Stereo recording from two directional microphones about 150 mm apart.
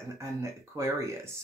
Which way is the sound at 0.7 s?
20° right (ahead or behind).